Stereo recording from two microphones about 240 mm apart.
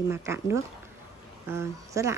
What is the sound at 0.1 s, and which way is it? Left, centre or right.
Speech, centre.